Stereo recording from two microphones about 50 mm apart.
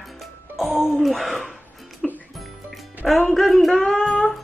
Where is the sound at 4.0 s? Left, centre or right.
Centre.